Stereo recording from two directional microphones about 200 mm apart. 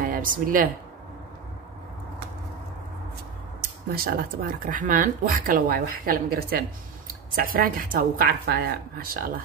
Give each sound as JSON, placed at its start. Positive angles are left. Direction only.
{"t": 0.0, "sound": "speech", "side_deg": -45}
{"t": 3.9, "sound": "a woman's voice", "side_deg": -45}